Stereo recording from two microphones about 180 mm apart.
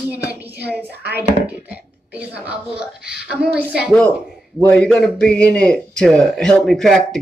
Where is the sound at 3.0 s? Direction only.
70° right (ahead or behind).